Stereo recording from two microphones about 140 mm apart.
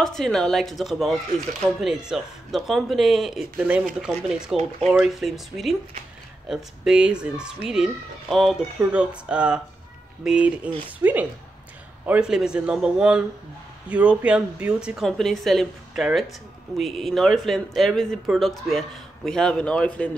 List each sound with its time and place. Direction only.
0.0 s speech: 5° left (ahead or behind)